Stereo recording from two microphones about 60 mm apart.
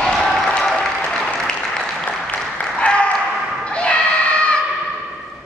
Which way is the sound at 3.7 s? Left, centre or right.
Centre.